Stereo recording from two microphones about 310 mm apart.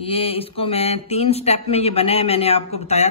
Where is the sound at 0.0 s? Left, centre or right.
Centre.